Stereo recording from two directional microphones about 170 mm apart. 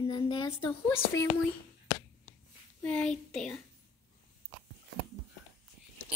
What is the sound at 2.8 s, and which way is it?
Speech, 5° left (ahead or behind).